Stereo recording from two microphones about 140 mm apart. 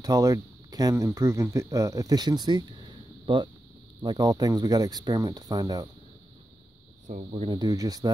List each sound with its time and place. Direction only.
0.0 s speech: 25° right (ahead or behind)
7.2 s speech: 45° right (ahead or behind)
7.5 s speech: 25° right (ahead or behind)